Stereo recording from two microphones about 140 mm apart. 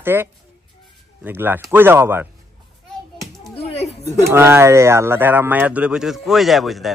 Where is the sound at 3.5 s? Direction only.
45° left (ahead or behind).